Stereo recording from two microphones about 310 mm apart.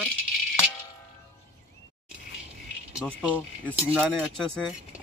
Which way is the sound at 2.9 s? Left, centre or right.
Centre.